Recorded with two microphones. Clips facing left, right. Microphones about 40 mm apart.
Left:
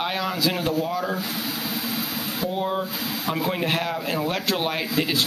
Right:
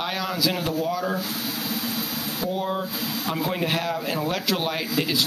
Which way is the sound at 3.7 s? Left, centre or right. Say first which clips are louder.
Left 1 dB; left.